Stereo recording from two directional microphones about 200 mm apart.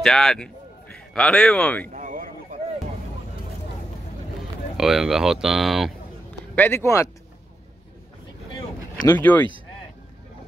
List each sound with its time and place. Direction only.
0.0 s a man's voice: centre (ahead or behind)
1.9 s a sound: 40° right (ahead or behind)
4.7 s speech: centre (ahead or behind)
6.5 s speech: 10° left (ahead or behind)
8.5 s vehicle: 15° left (ahead or behind)